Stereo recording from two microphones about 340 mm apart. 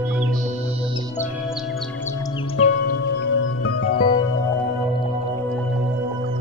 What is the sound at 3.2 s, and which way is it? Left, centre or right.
Music, left.